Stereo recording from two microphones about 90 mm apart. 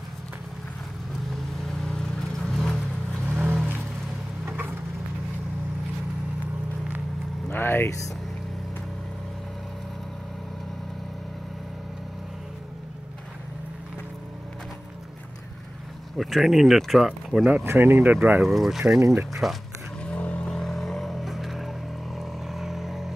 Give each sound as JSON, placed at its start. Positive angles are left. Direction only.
{"t": 2.0, "sound": "vehicle", "side_deg": 5}
{"t": 3.3, "sound": "vehicle", "side_deg": -20}
{"t": 7.4, "sound": "vehicle", "side_deg": 25}
{"t": 16.2, "sound": "speech", "side_deg": 0}
{"t": 17.6, "sound": "speech", "side_deg": -25}
{"t": 18.4, "sound": "speech", "side_deg": 0}
{"t": 18.9, "sound": "speech", "side_deg": -40}
{"t": 20.0, "sound": "vehicle", "side_deg": 15}